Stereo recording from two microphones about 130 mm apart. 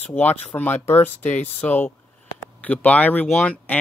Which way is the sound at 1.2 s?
70° left (ahead or behind).